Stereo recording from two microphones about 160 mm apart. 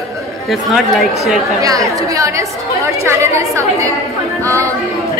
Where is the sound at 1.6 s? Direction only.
20° right (ahead or behind).